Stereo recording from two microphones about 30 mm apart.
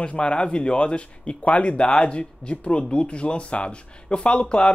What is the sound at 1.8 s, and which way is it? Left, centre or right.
Speech, left.